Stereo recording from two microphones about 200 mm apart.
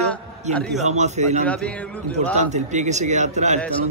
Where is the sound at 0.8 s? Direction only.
35° right (ahead or behind).